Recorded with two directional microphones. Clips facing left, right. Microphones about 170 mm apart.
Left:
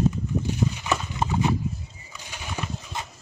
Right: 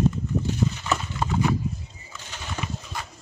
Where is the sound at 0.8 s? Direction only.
20° left (ahead or behind).